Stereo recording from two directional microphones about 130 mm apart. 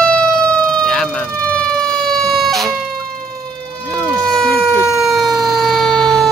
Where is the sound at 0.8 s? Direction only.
5° left (ahead or behind).